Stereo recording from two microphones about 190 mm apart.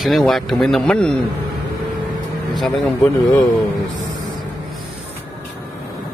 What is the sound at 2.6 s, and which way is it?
Speech, 10° left (ahead or behind).